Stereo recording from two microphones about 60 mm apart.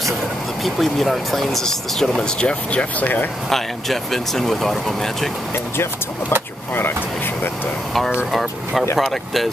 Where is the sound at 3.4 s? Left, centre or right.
Centre.